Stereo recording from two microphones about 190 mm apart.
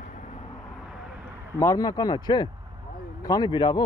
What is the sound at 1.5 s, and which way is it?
Speech, 15° left (ahead or behind).